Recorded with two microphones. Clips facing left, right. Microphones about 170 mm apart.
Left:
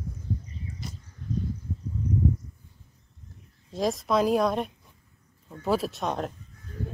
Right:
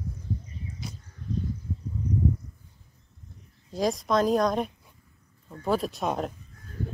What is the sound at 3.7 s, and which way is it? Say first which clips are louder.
Speech: even; centre (ahead or behind).